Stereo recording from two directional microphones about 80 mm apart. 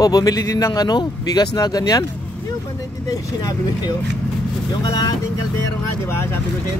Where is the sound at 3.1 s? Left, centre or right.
Left.